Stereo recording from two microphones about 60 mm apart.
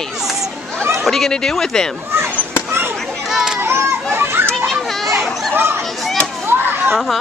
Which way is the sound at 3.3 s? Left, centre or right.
Centre.